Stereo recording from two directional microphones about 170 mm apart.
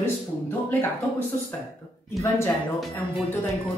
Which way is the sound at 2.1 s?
15° left (ahead or behind).